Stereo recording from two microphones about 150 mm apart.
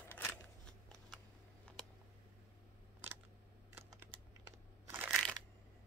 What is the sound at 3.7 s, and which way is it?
Typing, 20° right (ahead or behind).